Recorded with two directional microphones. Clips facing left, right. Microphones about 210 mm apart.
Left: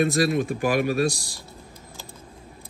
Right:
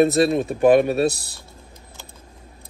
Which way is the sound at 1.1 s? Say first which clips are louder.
Left 3 dB; 60° right (ahead or behind).